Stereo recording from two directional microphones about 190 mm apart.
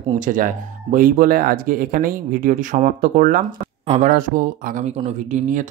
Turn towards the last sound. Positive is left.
turn(degrees=-40)  # may be behind; listen again after turning